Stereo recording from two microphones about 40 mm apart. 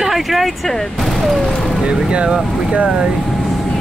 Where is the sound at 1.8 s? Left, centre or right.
Right.